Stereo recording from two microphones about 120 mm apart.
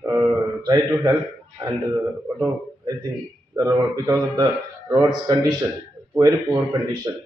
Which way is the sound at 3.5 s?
25° right (ahead or behind).